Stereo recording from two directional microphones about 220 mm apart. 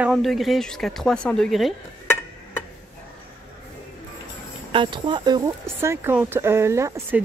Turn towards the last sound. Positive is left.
turn(degrees=-10)  # may be behind; listen again after turning